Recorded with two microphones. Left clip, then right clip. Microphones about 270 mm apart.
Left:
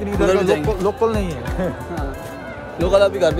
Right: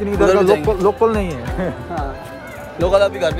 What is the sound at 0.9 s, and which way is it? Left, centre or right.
Speech, centre.